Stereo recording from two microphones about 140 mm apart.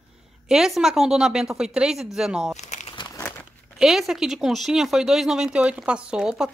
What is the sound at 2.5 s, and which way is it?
Crumpling, 55° left (ahead or behind).